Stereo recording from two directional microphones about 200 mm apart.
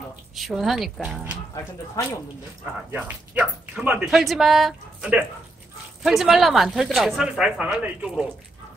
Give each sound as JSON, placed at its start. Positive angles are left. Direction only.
{"t": 0.4, "sound": "speech", "side_deg": 0}
{"t": 2.0, "sound": "speech", "side_deg": 15}
{"t": 2.9, "sound": "speech", "side_deg": -5}